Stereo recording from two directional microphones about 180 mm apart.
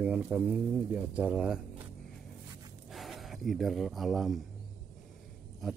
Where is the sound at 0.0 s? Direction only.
10° right (ahead or behind).